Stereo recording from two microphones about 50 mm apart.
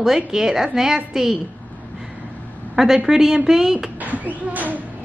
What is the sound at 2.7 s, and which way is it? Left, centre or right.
A woman's voice, centre.